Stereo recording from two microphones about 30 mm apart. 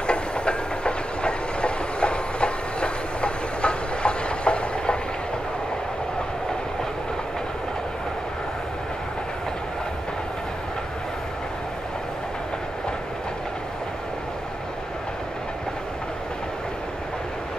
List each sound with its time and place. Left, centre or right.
0.0 s train: left